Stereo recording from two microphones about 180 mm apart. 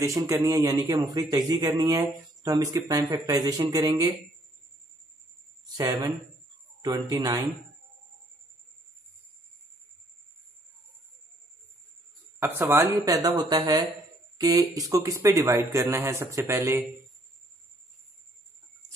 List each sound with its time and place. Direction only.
0.0 s speech: 15° right (ahead or behind)
5.7 s speech: 20° right (ahead or behind)
12.4 s a man's voice: 10° right (ahead or behind)